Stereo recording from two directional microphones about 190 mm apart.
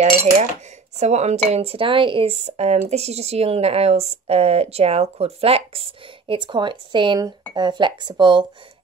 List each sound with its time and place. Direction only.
0.0 s speech: 35° right (ahead or behind)